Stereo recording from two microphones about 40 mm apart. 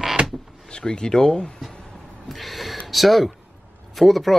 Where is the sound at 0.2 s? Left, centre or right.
Right.